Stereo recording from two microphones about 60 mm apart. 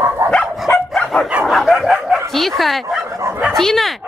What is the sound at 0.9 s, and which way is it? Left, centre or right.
Dog, centre.